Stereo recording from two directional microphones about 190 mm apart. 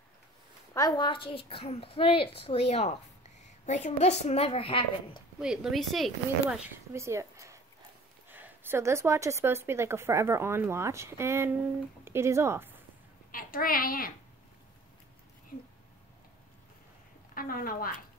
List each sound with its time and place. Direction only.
0.7 s a woman's voice: 20° left (ahead or behind)
5.4 s speech: 5° right (ahead or behind)
6.9 s a woman's voice: 15° right (ahead or behind)
13.3 s a child's voice: 45° left (ahead or behind)
17.3 s speech: 50° left (ahead or behind)